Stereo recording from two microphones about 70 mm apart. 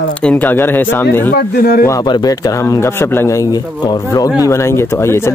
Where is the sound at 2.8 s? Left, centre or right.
Left.